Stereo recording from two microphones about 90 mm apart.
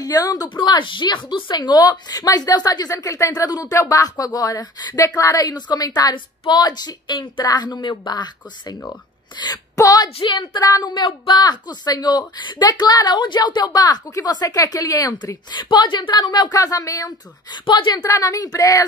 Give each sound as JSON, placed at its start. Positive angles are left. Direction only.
{"t": 0.0, "sound": "speech", "side_deg": 45}
{"t": 0.6, "sound": "a woman's voice", "side_deg": 60}
{"t": 5.0, "sound": "a woman's voice", "side_deg": 35}
{"t": 6.1, "sound": "a woman's voice", "side_deg": 60}
{"t": 10.1, "sound": "speech", "side_deg": 70}
{"t": 10.6, "sound": "a woman's voice", "side_deg": 45}
{"t": 10.9, "sound": "a woman's voice", "side_deg": 60}
{"t": 15.5, "sound": "a woman's voice", "side_deg": 55}
{"t": 17.5, "sound": "a woman's voice", "side_deg": 60}
{"t": 17.9, "sound": "speech", "side_deg": 40}